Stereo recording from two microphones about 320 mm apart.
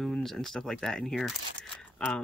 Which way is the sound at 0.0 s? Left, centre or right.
Centre.